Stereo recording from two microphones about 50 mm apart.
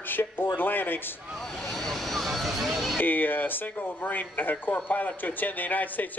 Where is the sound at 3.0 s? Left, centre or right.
Left.